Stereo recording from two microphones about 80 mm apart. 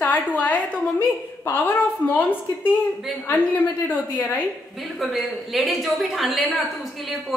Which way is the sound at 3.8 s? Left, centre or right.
Left.